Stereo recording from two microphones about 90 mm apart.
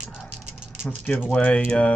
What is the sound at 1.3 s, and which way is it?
Speech, 15° left (ahead or behind).